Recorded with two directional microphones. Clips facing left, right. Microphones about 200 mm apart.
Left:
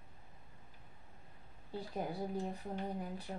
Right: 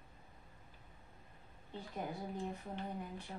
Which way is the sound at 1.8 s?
35° left (ahead or behind).